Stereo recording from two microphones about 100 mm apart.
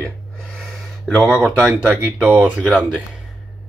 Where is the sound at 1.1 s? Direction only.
10° right (ahead or behind).